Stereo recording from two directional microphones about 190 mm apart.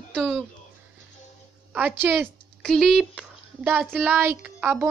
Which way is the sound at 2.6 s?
Centre (ahead or behind).